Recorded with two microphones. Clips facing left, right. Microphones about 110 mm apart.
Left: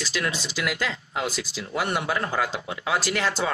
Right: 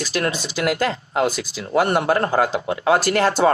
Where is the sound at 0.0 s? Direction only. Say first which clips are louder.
Right 6 dB; 50° right (ahead or behind).